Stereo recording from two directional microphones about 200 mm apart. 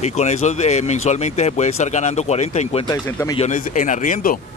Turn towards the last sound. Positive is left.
turn(degrees=40)  # may be behind; listen again after turning